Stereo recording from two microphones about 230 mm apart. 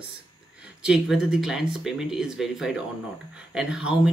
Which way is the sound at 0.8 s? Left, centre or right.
Centre.